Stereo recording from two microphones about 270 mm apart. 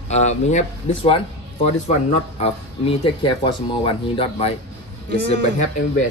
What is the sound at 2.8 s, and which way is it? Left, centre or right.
Speech, centre.